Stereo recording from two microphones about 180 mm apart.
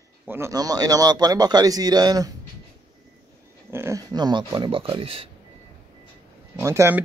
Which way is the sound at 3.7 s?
15° right (ahead or behind).